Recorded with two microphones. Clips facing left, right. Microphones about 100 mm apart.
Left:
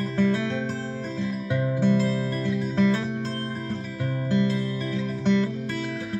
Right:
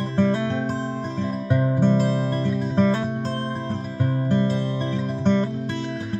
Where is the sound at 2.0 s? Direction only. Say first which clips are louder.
Right 3 dB; 25° right (ahead or behind).